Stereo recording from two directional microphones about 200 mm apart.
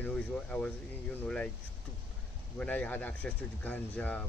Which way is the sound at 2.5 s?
5° left (ahead or behind).